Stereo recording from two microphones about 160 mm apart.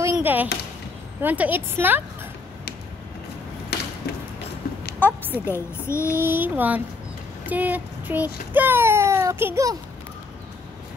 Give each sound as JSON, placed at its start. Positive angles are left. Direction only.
{"t": 0.0, "sound": "a sound", "side_deg": -15}
{"t": 1.2, "sound": "a woman's voice", "side_deg": -10}
{"t": 3.7, "sound": "a sound", "side_deg": 90}
{"t": 5.0, "sound": "a woman's voice", "side_deg": -10}
{"t": 5.5, "sound": "speech", "side_deg": 15}
{"t": 6.1, "sound": "a woman's voice", "side_deg": -10}